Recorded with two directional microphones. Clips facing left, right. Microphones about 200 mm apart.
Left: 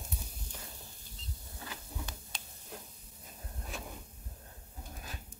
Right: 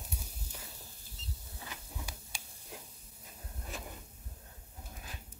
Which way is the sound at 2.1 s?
10° right (ahead or behind).